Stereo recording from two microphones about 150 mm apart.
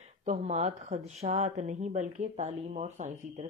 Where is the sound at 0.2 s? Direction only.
50° right (ahead or behind).